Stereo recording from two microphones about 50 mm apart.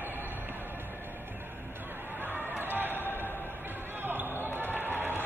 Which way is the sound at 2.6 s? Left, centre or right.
Right.